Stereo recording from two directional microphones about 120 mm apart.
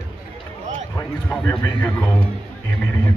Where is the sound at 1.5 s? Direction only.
15° left (ahead or behind).